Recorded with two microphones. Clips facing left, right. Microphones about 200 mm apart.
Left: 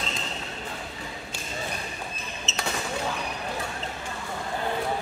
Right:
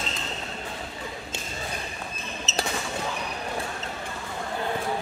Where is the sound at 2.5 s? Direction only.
40° right (ahead or behind).